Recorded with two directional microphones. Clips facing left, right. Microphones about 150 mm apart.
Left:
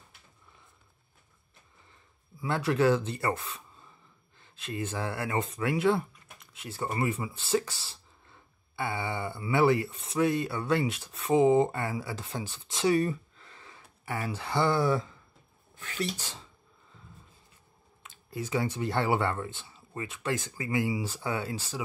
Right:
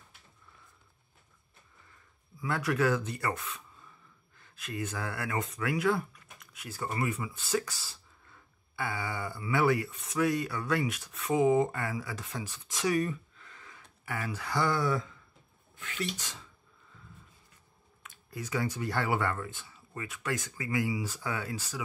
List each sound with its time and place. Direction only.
2.4 s speech: 25° left (ahead or behind)
18.0 s speech: 25° left (ahead or behind)